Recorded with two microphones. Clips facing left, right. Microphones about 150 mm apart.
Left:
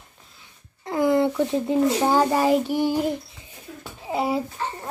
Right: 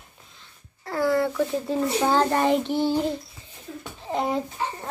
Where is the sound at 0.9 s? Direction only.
20° left (ahead or behind).